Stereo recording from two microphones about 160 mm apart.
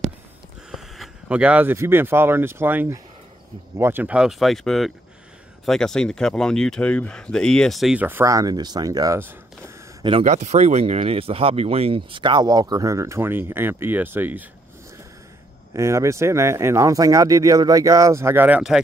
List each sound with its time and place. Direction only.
0.7 s speech: centre (ahead or behind); by 9.3 s 20° right (ahead or behind)
10.2 s speech: 50° right (ahead or behind); by 14.4 s 15° right (ahead or behind)
15.7 s speech: 20° right (ahead or behind)